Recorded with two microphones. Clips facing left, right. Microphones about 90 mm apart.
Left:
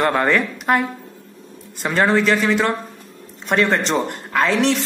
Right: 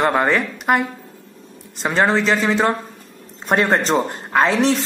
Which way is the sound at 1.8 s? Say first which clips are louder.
Even; 20° right (ahead or behind).